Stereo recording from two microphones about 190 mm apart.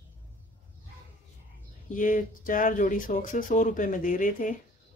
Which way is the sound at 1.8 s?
45° left (ahead or behind).